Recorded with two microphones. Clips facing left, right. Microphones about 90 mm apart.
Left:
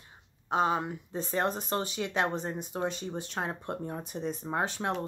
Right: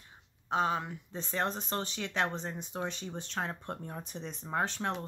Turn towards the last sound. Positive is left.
turn(degrees=10)  # may be behind; listen again after turning